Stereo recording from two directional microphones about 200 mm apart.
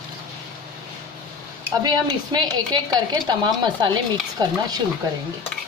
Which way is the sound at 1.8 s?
20° right (ahead or behind).